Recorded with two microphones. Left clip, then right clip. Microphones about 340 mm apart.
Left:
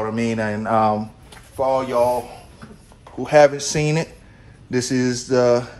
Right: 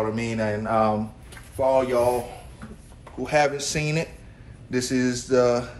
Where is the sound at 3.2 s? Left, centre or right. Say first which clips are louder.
Left 8 dB; left.